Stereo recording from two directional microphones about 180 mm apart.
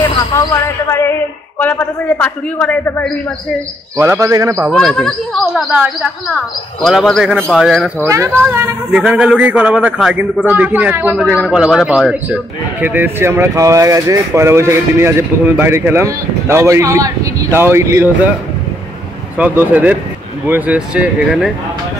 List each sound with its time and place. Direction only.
1.6 s a man's voice: 10° left (ahead or behind)
3.9 s speech: 15° right (ahead or behind)
4.6 s speech: 5° left (ahead or behind)
8.1 s speech: 15° right (ahead or behind)
19.3 s speech: 10° right (ahead or behind)